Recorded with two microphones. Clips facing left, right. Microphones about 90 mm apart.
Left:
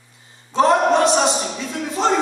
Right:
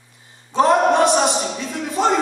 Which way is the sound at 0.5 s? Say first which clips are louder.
Even; 15° right (ahead or behind).